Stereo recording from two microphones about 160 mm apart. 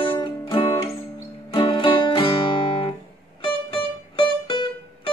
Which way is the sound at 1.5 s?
30° left (ahead or behind).